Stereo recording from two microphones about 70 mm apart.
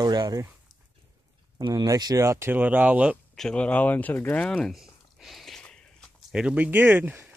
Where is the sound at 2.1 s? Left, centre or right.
Right.